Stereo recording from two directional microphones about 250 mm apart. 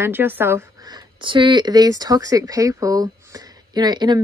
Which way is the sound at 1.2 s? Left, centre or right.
Centre.